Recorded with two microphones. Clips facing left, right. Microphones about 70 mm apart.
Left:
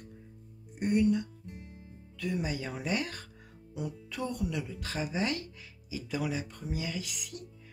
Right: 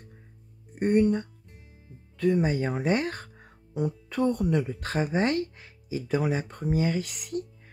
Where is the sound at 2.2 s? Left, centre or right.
Right.